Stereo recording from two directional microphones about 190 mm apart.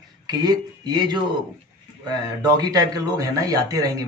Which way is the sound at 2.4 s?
20° right (ahead or behind).